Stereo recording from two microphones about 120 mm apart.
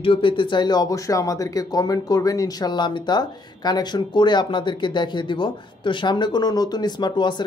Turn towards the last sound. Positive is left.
turn(degrees=40)  # may be behind; listen again after turning